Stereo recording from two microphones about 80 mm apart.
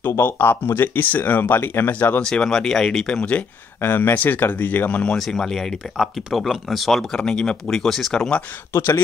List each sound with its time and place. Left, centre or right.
0.0 s speech: left
2.2 s speech: centre
3.8 s speech: left
5.1 s speech: centre
8.7 s speech: left